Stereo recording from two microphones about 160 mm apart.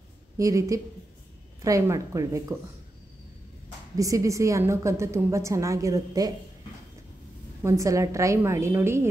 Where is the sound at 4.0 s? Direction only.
20° right (ahead or behind).